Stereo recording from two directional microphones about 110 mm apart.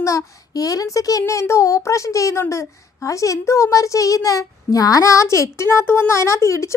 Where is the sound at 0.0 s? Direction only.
30° left (ahead or behind).